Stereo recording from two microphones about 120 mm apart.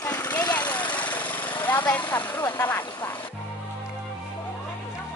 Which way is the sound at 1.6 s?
15° left (ahead or behind).